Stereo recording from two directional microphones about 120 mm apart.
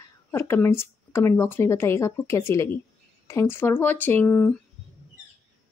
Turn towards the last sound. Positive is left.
turn(degrees=10)  # may be behind; listen again after turning